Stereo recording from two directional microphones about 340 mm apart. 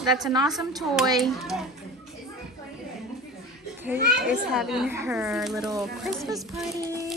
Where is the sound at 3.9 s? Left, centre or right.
Right.